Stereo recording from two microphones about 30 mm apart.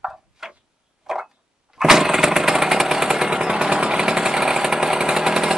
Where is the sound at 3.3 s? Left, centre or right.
Right.